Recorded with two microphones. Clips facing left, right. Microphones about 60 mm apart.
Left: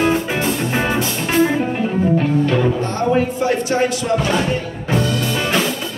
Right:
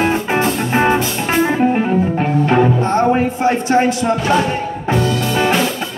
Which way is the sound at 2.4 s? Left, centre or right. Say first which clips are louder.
Right 4 dB; right.